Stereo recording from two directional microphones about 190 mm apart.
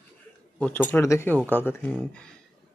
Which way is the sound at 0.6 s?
10° left (ahead or behind).